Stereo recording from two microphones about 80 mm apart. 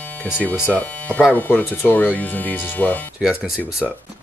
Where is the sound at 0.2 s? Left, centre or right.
Centre.